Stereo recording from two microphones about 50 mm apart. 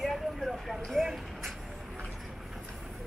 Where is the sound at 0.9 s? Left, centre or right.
Centre.